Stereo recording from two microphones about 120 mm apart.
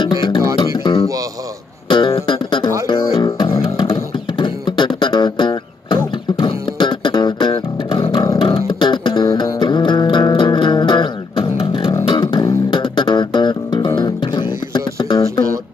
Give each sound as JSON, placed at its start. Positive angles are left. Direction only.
{"t": 0.0, "sound": "music", "side_deg": 40}